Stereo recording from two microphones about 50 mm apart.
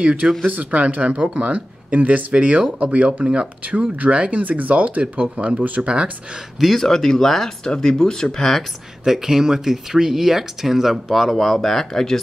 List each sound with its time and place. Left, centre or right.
0.0 s speech: right
6.6 s speech: centre
9.0 s speech: centre